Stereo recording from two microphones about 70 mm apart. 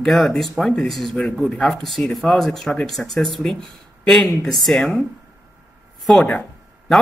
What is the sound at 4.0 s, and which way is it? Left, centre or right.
Speech, centre.